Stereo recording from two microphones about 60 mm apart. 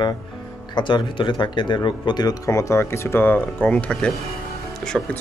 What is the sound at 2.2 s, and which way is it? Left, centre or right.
Speech, left.